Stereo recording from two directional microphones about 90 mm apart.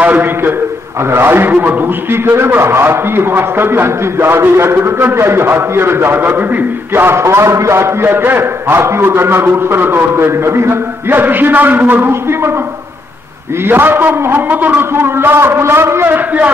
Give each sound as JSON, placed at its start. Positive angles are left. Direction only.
{"t": 0.0, "sound": "a man's voice", "side_deg": -20}
{"t": 13.7, "sound": "a man's voice", "side_deg": -25}